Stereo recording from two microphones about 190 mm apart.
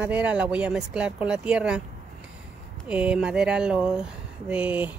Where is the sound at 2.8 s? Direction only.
5° right (ahead or behind).